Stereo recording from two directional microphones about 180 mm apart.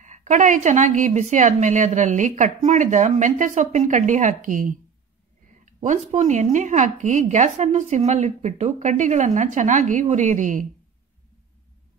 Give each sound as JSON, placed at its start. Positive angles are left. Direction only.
{"t": 0.0, "sound": "a woman's voice", "side_deg": -45}